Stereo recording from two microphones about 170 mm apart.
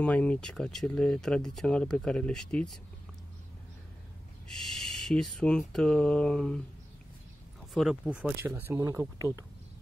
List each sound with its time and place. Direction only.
0.0 s speech: 10° left (ahead or behind)
4.5 s speech: centre (ahead or behind)
7.7 s speech: centre (ahead or behind)
8.5 s speech: 15° right (ahead or behind)